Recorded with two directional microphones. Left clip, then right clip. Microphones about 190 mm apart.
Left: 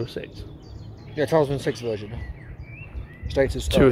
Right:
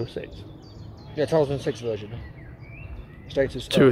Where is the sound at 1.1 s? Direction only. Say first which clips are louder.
Left 1 dB; 30° left (ahead or behind).